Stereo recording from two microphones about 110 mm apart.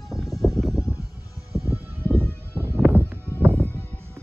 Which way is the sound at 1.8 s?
25° right (ahead or behind).